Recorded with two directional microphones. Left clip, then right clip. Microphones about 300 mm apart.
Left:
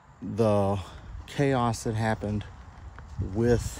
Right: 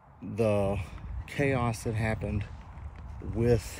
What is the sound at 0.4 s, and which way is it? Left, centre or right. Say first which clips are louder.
Speech: left 3 dB; centre.